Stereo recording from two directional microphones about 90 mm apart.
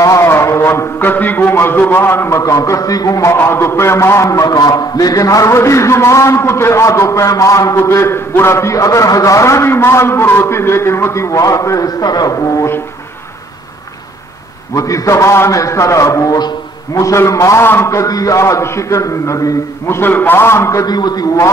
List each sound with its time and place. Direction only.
0.0 s a man's voice: 35° left (ahead or behind)
14.8 s a man's voice: 35° left (ahead or behind)
16.9 s a man's voice: 35° left (ahead or behind)
20.0 s a man's voice: 20° left (ahead or behind)
20.8 s a man's voice: 50° left (ahead or behind)